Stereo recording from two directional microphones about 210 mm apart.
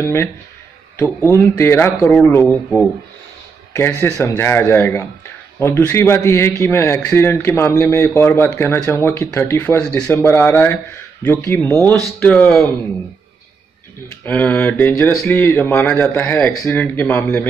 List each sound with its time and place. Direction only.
0.0 s a man's voice: 10° left (ahead or behind)
3.7 s a man's voice: 10° left (ahead or behind)
14.2 s a man's voice: 10° left (ahead or behind)